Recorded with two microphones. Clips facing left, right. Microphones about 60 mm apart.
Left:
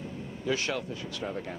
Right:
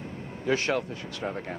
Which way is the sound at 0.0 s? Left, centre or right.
Right.